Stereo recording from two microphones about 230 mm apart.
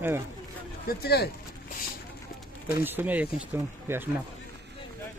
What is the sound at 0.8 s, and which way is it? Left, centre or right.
Speech, left.